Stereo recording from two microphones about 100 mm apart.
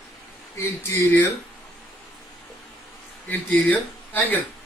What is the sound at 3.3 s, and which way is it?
Speech, 15° left (ahead or behind).